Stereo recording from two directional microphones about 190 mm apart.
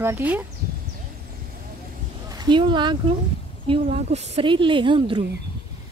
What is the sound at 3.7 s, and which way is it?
A woman's voice, 35° right (ahead or behind).